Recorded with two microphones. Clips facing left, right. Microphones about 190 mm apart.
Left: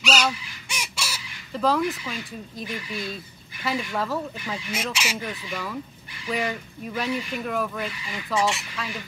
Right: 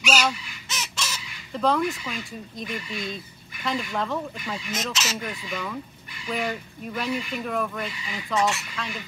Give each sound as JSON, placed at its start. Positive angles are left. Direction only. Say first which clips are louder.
{"t": 0.0, "sound": "honk", "louder": "even", "side_deg": 0}
{"t": 0.7, "sound": "chicken", "louder": "even", "side_deg": 10}
{"t": 2.7, "sound": "speech", "louder": "even", "side_deg": 5}